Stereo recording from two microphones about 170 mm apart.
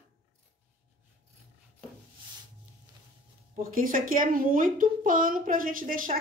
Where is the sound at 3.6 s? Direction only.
55° right (ahead or behind).